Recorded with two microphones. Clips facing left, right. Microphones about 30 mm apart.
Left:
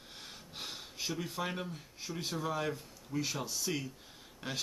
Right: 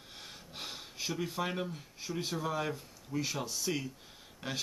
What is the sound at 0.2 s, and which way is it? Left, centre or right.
A man's voice, centre.